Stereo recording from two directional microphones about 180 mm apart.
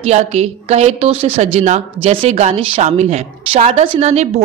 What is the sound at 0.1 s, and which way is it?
A woman's voice, 35° right (ahead or behind).